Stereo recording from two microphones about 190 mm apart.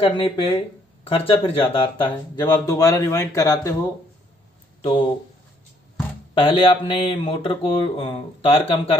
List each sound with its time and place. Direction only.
0.0 s speech: 30° left (ahead or behind)
4.8 s speech: 30° left (ahead or behind)
6.3 s speech: 25° left (ahead or behind)